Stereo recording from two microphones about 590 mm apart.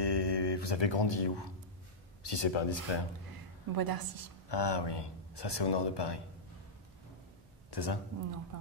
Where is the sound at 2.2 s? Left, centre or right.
Left.